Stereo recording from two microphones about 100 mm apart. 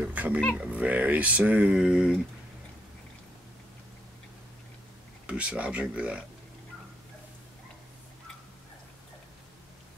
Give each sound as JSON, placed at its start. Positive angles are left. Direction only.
{"t": 0.0, "sound": "speech", "side_deg": -15}
{"t": 5.2, "sound": "speech", "side_deg": -10}